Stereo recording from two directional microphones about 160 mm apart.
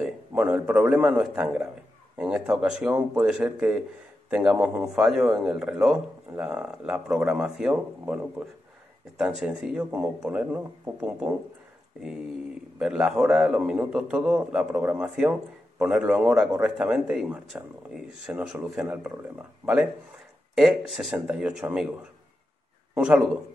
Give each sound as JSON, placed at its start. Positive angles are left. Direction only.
{"t": 0.0, "sound": "a man's voice", "side_deg": -5}
{"t": 12.7, "sound": "a man's voice", "side_deg": -5}
{"t": 22.9, "sound": "a man's voice", "side_deg": -5}